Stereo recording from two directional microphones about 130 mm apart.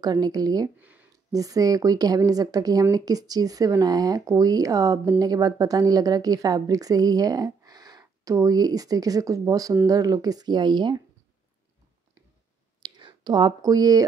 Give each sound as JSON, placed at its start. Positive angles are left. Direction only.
{"t": 0.0, "sound": "a woman's voice", "side_deg": -30}
{"t": 0.7, "sound": "a sound", "side_deg": -10}
{"t": 1.3, "sound": "a woman's voice", "side_deg": -25}
{"t": 12.8, "sound": "speech", "side_deg": -35}